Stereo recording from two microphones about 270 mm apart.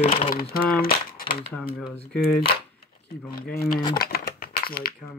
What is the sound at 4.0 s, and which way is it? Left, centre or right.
Typewriter, left.